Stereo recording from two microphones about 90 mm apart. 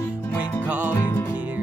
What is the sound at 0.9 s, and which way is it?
Music, 25° left (ahead or behind).